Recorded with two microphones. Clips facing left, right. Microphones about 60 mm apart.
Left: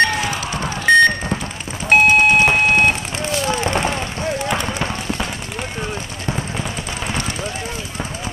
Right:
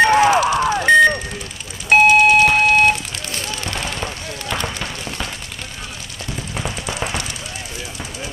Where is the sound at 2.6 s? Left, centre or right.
Left.